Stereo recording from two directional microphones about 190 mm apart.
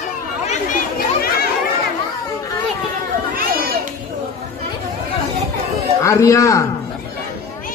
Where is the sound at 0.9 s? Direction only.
50° left (ahead or behind).